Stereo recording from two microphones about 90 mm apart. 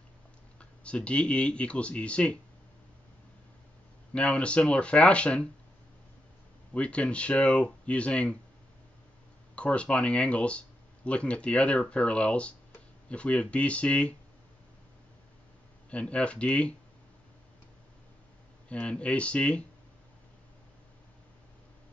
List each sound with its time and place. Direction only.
0.6 s speech: 10° left (ahead or behind)
4.1 s speech: 10° left (ahead or behind)
6.7 s speech: 15° left (ahead or behind)
9.6 s speech: 15° left (ahead or behind)
15.9 s speech: 15° left (ahead or behind)
18.7 s speech: 10° left (ahead or behind)